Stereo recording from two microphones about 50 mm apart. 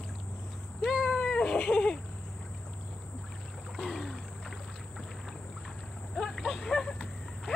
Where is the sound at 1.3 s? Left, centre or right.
Centre.